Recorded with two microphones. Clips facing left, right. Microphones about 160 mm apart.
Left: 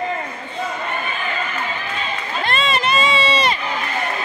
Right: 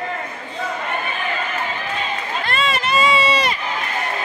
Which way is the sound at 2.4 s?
25° left (ahead or behind).